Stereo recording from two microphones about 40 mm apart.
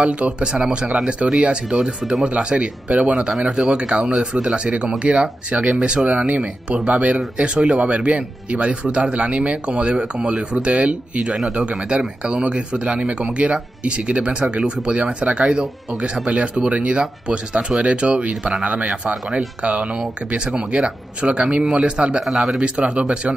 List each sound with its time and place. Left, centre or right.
0.0 s speech: right
3.2 s speech: centre
22.2 s speech: centre
22.6 s speech: right